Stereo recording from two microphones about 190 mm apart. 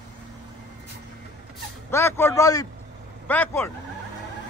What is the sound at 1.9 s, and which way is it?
A man's voice, 15° left (ahead or behind).